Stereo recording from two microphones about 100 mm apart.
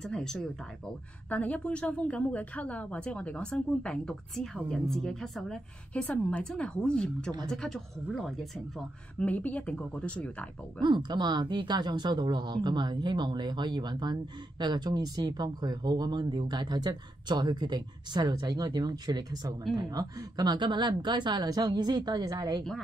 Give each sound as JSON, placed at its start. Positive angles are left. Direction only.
{"t": 0.0, "sound": "a woman's voice", "side_deg": 5}
{"t": 9.2, "sound": "a woman's voice", "side_deg": 15}
{"t": 10.8, "sound": "speech", "side_deg": -50}